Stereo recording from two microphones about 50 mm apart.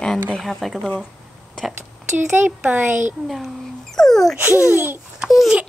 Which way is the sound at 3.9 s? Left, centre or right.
Centre.